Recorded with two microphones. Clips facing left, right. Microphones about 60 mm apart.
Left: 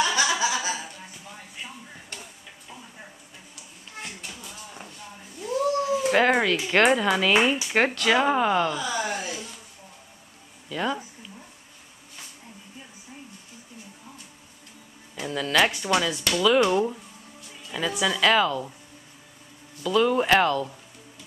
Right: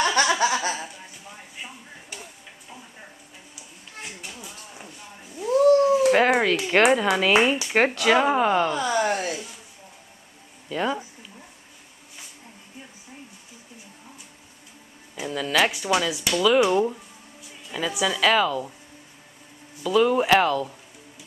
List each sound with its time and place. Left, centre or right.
0.0 s chuckle: right
1.6 s a sound: centre
4.0 s a sound: centre
5.5 s cat: right
6.1 s speech: centre
8.7 s a sound: right
10.7 s speech: centre
15.2 s speech: centre
19.8 s speech: centre